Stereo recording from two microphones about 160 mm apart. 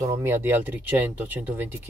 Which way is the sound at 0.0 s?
15° right (ahead or behind).